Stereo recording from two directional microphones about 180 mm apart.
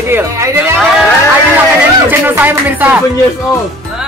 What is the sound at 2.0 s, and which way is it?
Speech, 10° right (ahead or behind).